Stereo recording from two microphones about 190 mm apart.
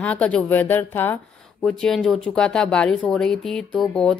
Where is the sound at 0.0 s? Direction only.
5° left (ahead or behind).